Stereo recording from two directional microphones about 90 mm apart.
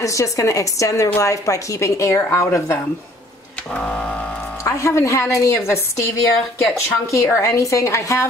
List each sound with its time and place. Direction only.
0.0 s a woman's voice: 35° left (ahead or behind)
3.7 s printer: 15° left (ahead or behind)
4.6 s a woman's voice: 35° left (ahead or behind)